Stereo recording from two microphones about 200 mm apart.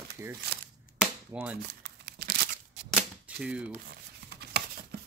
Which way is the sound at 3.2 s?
5° right (ahead or behind).